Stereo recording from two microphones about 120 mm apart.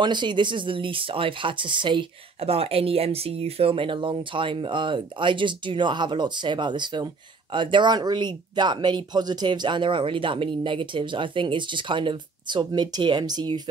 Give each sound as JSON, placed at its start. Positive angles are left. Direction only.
{"t": 0.0, "sound": "speech", "side_deg": -40}